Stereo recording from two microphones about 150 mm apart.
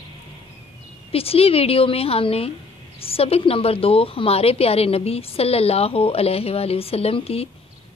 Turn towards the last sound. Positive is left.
turn(degrees=40)  # may be behind; listen again after turning